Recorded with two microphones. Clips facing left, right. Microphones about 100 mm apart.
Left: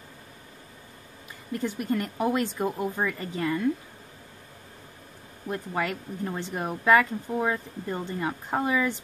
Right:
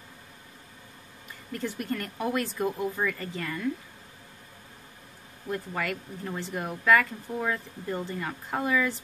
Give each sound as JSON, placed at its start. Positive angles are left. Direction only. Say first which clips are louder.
{"t": 1.6, "sound": "a woman's voice", "louder": "left 4 dB", "side_deg": 20}
{"t": 5.5, "sound": "a woman's voice", "louder": "left 2 dB", "side_deg": 25}